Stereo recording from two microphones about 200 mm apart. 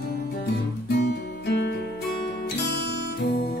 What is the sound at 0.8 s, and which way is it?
Music, 55° left (ahead or behind).